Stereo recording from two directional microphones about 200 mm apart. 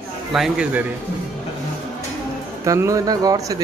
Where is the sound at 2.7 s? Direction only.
15° right (ahead or behind).